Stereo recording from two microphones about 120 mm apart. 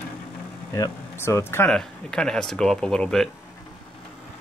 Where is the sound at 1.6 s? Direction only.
5° left (ahead or behind).